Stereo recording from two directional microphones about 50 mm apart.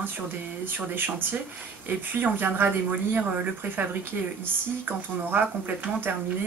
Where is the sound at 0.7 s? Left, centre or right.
Right.